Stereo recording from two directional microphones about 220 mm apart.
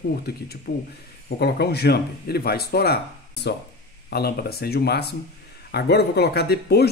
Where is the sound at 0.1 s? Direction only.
45° left (ahead or behind).